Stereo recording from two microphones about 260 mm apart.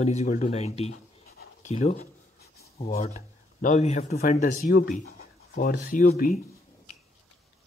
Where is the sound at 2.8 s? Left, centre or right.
Left.